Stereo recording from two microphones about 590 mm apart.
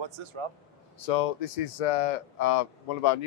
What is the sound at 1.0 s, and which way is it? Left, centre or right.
Speech, left.